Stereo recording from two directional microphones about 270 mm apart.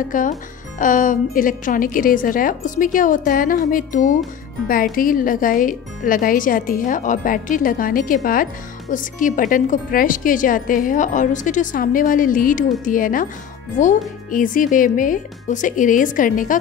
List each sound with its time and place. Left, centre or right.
0.1 s speech: left